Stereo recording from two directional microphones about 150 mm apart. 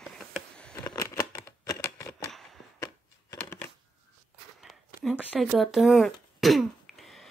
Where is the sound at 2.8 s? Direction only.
25° left (ahead or behind).